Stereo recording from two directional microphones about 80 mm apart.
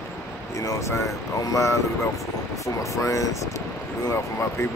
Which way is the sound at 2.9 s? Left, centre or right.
Left.